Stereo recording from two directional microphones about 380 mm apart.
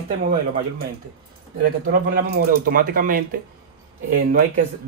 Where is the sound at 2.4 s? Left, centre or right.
Right.